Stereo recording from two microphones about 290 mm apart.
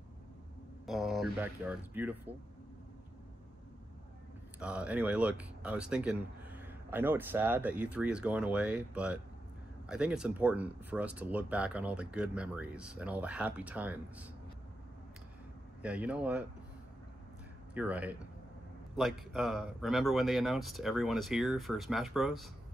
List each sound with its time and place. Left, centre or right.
0.8 s speech: centre
4.6 s speech: centre
15.8 s speech: centre
17.7 s speech: centre